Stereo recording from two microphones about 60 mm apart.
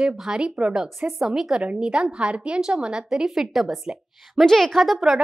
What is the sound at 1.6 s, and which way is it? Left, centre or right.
A woman's voice, centre.